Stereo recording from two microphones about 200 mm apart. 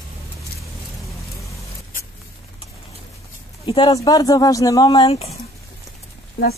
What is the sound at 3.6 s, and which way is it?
Speech, 25° left (ahead or behind).